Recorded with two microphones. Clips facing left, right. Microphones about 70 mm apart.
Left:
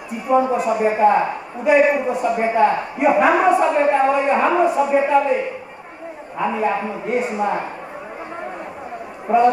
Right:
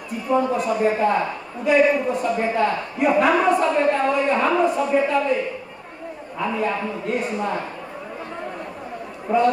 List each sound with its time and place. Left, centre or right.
0.3 s a woman's voice: centre
9.3 s a woman's voice: centre